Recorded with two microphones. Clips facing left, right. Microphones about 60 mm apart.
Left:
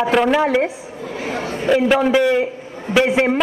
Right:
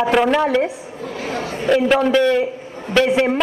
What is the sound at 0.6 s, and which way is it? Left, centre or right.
Speech, left.